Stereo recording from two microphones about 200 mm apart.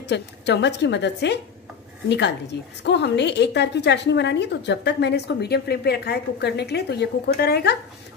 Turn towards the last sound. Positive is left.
turn(degrees=55)  # may be behind; listen again after turning